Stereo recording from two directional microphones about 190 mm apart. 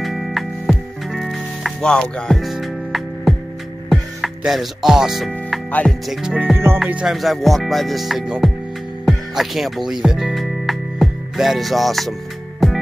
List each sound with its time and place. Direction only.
0.0 s music: centre (ahead or behind)
3.9 s speech: centre (ahead or behind)
6.8 s music: 5° right (ahead or behind)